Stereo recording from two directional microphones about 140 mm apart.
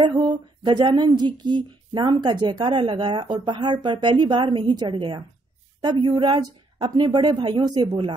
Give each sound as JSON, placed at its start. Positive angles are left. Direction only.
{"t": 0.7, "sound": "a woman's voice", "side_deg": -35}